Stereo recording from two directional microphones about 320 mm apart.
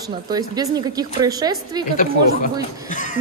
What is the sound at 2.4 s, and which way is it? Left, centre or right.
Speech, left.